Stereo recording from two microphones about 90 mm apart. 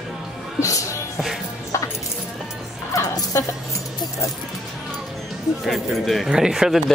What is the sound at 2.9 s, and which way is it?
Music, 40° left (ahead or behind).